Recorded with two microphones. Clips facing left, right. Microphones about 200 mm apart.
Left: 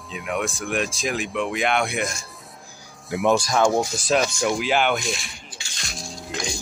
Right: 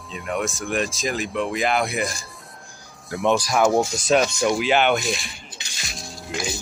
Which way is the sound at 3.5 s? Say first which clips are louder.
Right 1 dB; 5° right (ahead or behind).